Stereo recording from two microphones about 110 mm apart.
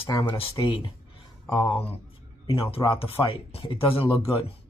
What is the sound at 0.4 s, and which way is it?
Speech, 50° left (ahead or behind).